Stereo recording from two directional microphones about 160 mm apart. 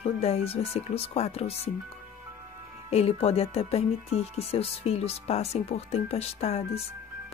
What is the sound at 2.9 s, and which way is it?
Speech, 40° left (ahead or behind).